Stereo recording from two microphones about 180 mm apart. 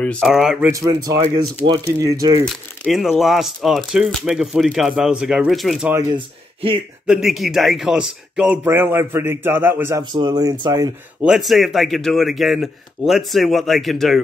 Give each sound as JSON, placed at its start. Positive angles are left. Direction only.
{"t": 0.0, "sound": "speech", "side_deg": 0}
{"t": 0.7, "sound": "speech", "side_deg": -20}
{"t": 2.4, "sound": "speech", "side_deg": 0}
{"t": 6.1, "sound": "speech", "side_deg": -30}
{"t": 7.1, "sound": "speech", "side_deg": 0}
{"t": 11.2, "sound": "speech", "side_deg": 0}